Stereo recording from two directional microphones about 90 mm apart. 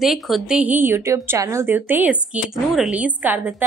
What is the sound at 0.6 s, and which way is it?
A woman's voice, 20° right (ahead or behind).